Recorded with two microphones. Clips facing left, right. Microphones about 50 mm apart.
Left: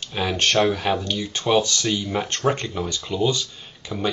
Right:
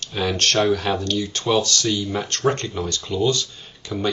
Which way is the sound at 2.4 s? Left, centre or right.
Centre.